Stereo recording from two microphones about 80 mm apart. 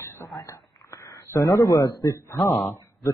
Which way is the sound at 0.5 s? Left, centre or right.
Left.